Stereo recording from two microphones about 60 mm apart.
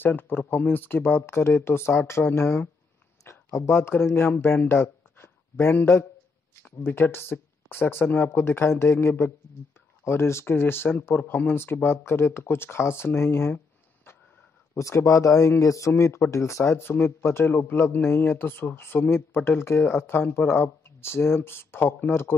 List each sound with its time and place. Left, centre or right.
0.0 s speech: left
4.6 s a sound: left
6.8 s speech: left
14.7 s speech: left
16.0 s speech: left
17.5 s speech: left